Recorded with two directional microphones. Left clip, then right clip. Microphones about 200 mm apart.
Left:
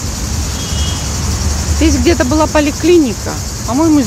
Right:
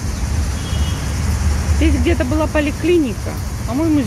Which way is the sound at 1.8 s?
15° left (ahead or behind).